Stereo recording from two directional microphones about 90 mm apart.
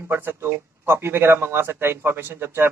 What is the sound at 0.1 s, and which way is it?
A man's voice, 25° right (ahead or behind).